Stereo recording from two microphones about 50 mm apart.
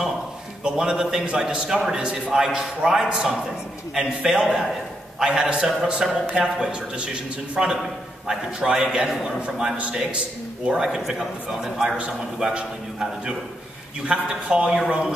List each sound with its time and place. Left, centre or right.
0.7 s a man's voice: centre